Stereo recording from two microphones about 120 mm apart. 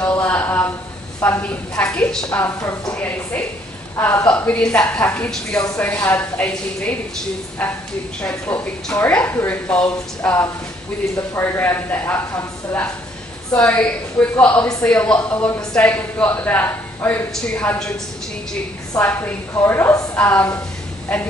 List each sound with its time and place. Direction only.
0.1 s a sound: 15° left (ahead or behind)
1.2 s a man's voice: 15° left (ahead or behind)
2.3 s a woman's voice: 25° left (ahead or behind)
2.9 s a man's voice: 15° left (ahead or behind)
3.9 s a woman's voice: 25° left (ahead or behind)
4.3 s a man's voice: 10° left (ahead or behind)
13.7 s a man's voice: 10° left (ahead or behind)
18.9 s a woman's voice: 20° left (ahead or behind)